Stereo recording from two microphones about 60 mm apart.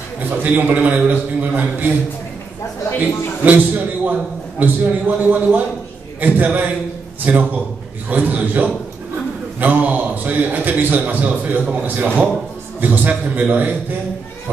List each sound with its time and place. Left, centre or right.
0.4 s a man's voice: right
3.4 s a man's voice: right